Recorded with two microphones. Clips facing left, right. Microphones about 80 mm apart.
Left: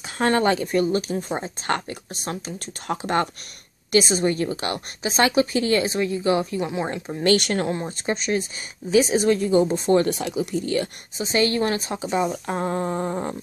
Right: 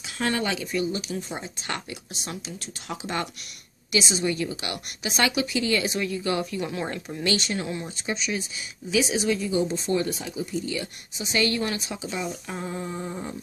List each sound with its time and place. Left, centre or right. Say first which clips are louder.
0.0 s a woman's voice: left 7 dB; left
7.2 s speech: left 7 dB; left
7.7 s speech: left 5 dB; left
11.2 s speech: left 4 dB; left